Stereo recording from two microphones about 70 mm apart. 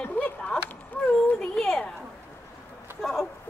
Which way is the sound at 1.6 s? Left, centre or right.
Centre.